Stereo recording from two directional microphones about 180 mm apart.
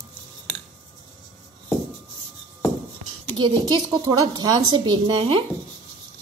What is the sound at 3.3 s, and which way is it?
A woman's voice, 25° right (ahead or behind).